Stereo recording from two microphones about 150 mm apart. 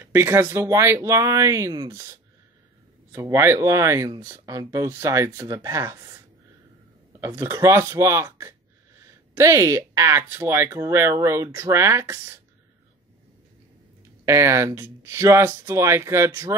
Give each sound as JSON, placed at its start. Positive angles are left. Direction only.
{"t": 0.0, "sound": "speech", "side_deg": -15}
{"t": 7.2, "sound": "speech", "side_deg": -20}
{"t": 14.2, "sound": "speech", "side_deg": -20}